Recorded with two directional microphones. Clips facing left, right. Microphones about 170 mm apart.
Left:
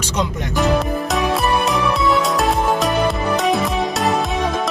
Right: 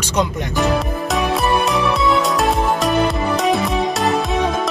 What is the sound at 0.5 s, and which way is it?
Music, centre (ahead or behind).